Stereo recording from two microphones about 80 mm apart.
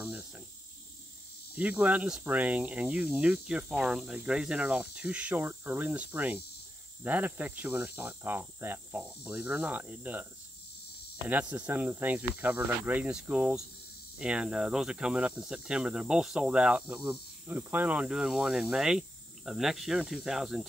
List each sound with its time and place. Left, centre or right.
1.6 s speech: centre
5.4 s cricket: right
9.0 s cricket: centre
11.2 s cricket: centre
13.1 s speech: centre
17.5 s cricket: right
18.1 s speech: centre